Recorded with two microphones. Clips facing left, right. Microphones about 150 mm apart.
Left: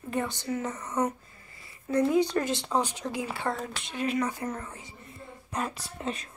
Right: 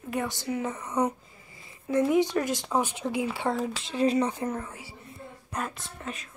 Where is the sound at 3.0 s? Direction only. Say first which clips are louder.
Right 4 dB; 20° right (ahead or behind).